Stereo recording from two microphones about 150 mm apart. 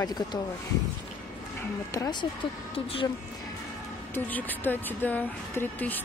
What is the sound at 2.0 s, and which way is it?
Speech, 30° left (ahead or behind).